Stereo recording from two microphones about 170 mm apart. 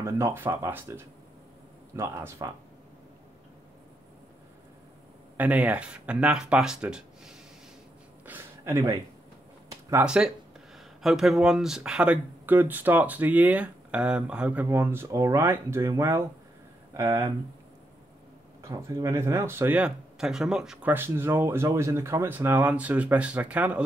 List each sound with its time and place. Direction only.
0.0 s speech: 15° right (ahead or behind)
5.4 s speech: 10° right (ahead or behind)
8.3 s a sound: 15° right (ahead or behind)
10.0 s speech: 5° right (ahead or behind)
18.6 s speech: 20° right (ahead or behind)